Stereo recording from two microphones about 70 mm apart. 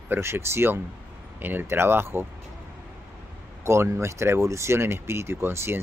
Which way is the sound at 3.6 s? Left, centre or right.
Right.